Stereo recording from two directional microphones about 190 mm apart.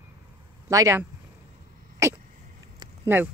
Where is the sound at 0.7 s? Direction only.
15° right (ahead or behind).